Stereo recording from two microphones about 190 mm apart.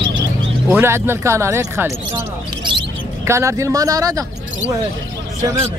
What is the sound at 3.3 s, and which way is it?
Speech, 15° right (ahead or behind).